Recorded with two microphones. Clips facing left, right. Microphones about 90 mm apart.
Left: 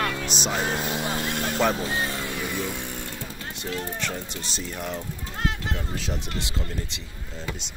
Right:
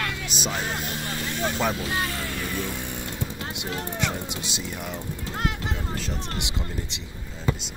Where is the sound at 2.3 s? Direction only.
10° left (ahead or behind).